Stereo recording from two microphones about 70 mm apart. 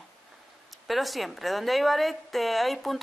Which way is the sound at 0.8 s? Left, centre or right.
Centre.